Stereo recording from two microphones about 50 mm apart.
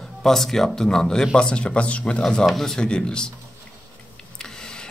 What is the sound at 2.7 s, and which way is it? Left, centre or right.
Speech, centre.